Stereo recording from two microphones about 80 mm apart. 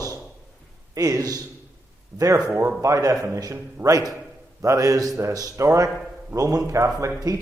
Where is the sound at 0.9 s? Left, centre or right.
Right.